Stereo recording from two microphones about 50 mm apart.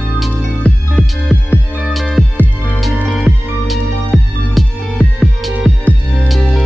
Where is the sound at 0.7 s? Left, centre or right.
Left.